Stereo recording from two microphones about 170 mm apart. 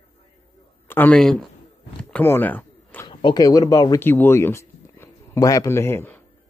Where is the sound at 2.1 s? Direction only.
10° left (ahead or behind).